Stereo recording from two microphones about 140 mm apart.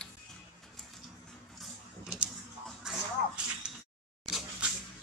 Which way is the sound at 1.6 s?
5° right (ahead or behind).